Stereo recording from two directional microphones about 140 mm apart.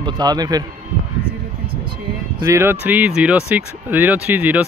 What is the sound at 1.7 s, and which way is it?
Vehicle, 35° right (ahead or behind).